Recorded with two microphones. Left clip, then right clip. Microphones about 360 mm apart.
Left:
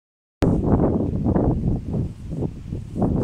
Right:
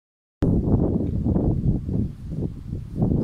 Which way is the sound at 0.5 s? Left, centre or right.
Left.